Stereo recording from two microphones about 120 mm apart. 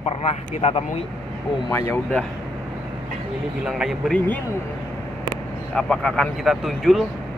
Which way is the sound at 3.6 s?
5° right (ahead or behind).